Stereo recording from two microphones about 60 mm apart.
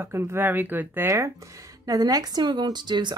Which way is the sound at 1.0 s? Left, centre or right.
Right.